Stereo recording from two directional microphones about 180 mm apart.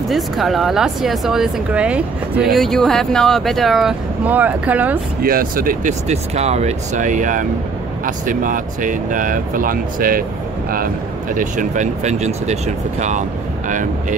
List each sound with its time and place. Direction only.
0.1 s speech: centre (ahead or behind)
5.2 s speech: 55° right (ahead or behind)
11.3 s speech: 45° right (ahead or behind)